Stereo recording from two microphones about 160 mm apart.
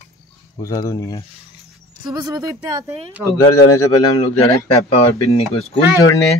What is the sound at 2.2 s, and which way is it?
Speech, 25° right (ahead or behind).